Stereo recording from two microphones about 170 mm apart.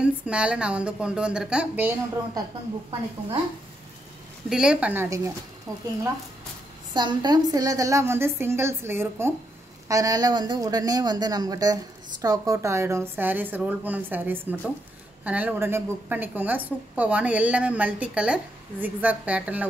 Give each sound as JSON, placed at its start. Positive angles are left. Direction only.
{"t": 0.0, "sound": "a woman's voice", "side_deg": -5}
{"t": 4.5, "sound": "a woman's voice", "side_deg": -5}
{"t": 6.9, "sound": "a woman's voice", "side_deg": -25}